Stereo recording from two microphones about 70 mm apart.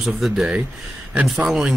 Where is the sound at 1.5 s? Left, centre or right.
Centre.